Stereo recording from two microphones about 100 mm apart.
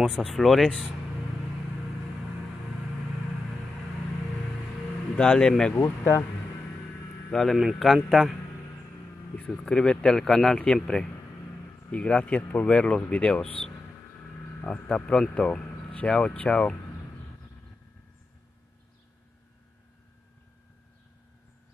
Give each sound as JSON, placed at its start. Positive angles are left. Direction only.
{"t": 0.4, "sound": "speech", "side_deg": 0}
{"t": 5.1, "sound": "speech", "side_deg": 10}
{"t": 5.8, "sound": "speech", "side_deg": 25}
{"t": 7.2, "sound": "speech", "side_deg": 10}
{"t": 9.3, "sound": "speech", "side_deg": 10}
{"t": 14.6, "sound": "speech", "side_deg": 15}